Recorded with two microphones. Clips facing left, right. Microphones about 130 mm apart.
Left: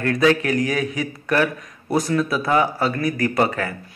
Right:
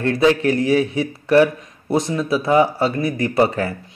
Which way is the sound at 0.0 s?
30° right (ahead or behind).